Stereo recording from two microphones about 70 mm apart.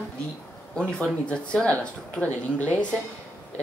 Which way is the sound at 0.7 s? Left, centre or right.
Centre.